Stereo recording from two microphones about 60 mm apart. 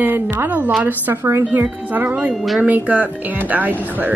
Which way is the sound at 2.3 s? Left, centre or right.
Centre.